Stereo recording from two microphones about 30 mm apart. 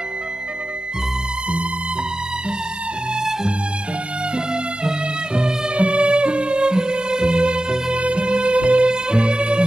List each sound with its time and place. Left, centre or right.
4.8 s music: right
5.8 s music: right